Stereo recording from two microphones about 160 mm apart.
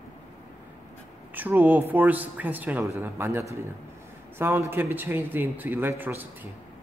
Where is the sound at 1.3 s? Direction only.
10° right (ahead or behind).